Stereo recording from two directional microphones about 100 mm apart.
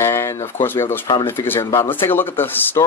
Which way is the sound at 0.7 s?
20° left (ahead or behind).